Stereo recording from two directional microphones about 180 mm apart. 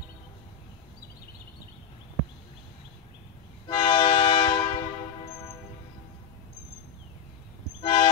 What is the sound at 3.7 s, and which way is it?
Train, 25° left (ahead or behind).